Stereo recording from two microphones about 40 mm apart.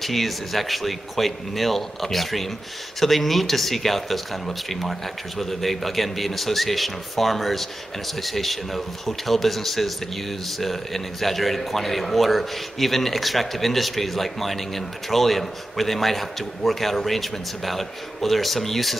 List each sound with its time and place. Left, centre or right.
0.0 s speech: centre